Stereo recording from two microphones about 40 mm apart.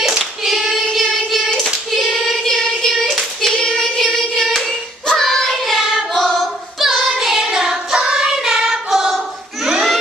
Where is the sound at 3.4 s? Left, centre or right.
Centre.